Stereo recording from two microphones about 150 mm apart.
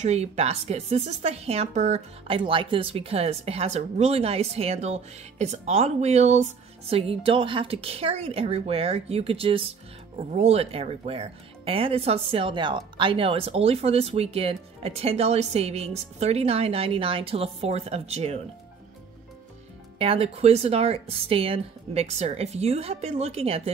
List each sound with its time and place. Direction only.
0.0 s a woman's voice: 45° right (ahead or behind)
20.0 s a woman's voice: 40° right (ahead or behind)